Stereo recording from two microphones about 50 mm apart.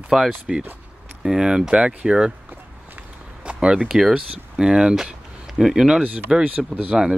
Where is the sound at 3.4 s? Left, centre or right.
Centre.